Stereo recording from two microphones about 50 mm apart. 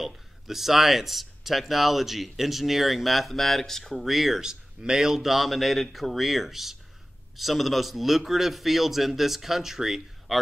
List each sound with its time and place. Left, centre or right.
0.0 s speech: centre